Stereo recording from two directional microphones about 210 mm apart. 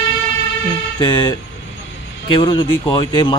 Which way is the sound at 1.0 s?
20° left (ahead or behind).